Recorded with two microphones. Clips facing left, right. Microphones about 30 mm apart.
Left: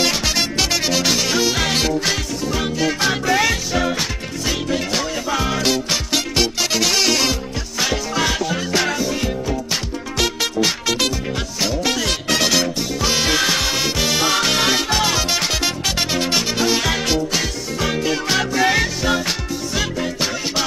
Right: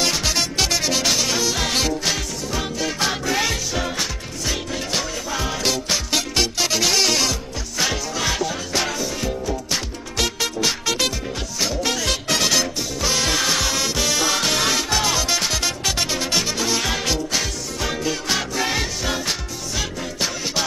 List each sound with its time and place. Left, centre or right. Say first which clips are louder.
0.0 s music: left 2 dB; centre
10.1 s music: left 3 dB; centre
16.8 s music: left 3 dB; centre